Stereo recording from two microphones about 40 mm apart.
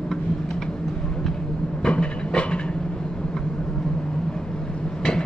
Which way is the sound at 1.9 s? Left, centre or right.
Left.